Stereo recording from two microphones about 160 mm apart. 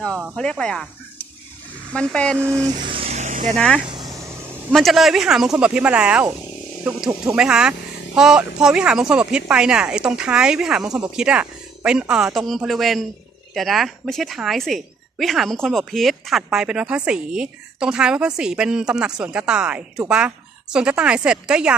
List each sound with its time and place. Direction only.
0.4 s speech: 5° left (ahead or behind)
2.3 s speech: 20° right (ahead or behind)
2.8 s vehicle: 35° right (ahead or behind); by 3.5 s 50° right (ahead or behind)
3.5 s a woman's voice: 5° left (ahead or behind)